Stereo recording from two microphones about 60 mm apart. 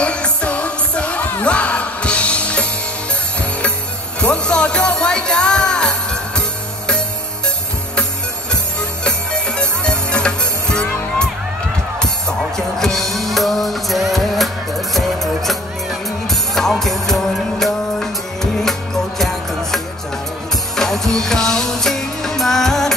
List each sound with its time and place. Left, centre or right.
0.0 s music: centre
4.2 s music: centre
9.0 s music: centre
12.5 s music: centre